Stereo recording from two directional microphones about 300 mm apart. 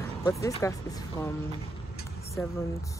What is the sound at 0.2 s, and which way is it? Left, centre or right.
Speech, centre.